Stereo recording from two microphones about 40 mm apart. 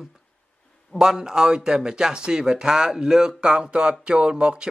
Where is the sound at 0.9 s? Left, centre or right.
Centre.